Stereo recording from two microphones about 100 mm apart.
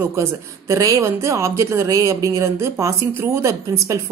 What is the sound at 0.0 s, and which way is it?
Speech, 25° right (ahead or behind).